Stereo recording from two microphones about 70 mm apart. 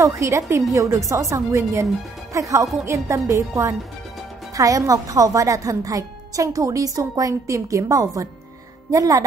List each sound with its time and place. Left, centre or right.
0.0 s a woman's voice: right